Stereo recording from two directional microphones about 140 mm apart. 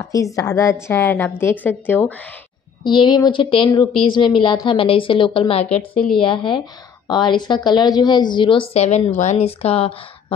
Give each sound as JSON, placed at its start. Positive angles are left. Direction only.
{"t": 0.1, "sound": "a woman's voice", "side_deg": 25}
{"t": 2.8, "sound": "a woman's voice", "side_deg": 35}
{"t": 5.7, "sound": "a woman's voice", "side_deg": 5}
{"t": 6.1, "sound": "a woman's voice", "side_deg": 35}